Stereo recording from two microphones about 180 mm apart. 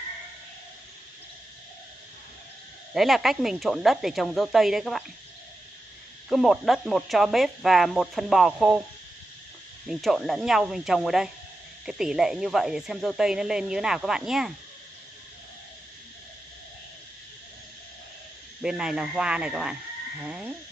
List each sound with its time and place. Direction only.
2.9 s speech: centre (ahead or behind)
6.2 s speech: centre (ahead or behind)
9.8 s speech: centre (ahead or behind)
18.6 s speech: 5° right (ahead or behind)